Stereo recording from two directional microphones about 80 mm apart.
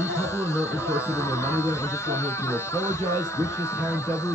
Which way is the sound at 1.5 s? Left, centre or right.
Left.